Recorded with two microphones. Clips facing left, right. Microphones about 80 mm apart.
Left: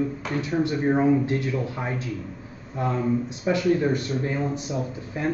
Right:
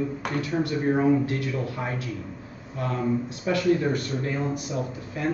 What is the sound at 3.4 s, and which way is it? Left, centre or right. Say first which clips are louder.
Speech: left 1 dB; left.